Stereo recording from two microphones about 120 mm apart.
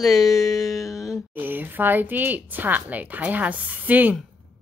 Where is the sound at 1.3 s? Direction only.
15° right (ahead or behind).